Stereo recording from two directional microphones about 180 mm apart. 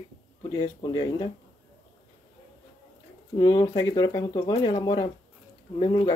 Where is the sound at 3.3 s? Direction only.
20° left (ahead or behind).